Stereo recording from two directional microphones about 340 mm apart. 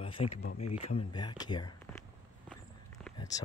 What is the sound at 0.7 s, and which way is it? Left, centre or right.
Speech, centre.